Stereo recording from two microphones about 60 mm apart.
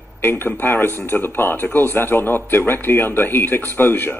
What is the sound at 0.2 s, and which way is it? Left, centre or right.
Speech, left.